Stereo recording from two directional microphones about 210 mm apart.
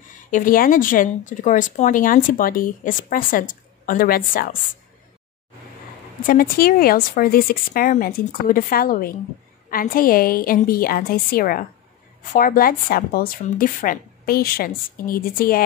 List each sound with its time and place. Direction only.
0.3 s speech: 40° left (ahead or behind)
6.2 s a woman's voice: 40° left (ahead or behind)